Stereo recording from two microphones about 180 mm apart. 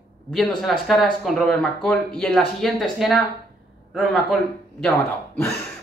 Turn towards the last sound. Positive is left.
turn(degrees=5)  # may be behind; listen again after turning